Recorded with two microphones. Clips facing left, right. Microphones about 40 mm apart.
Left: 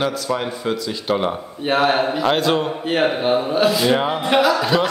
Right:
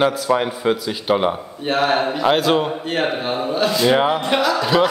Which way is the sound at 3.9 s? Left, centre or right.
Centre.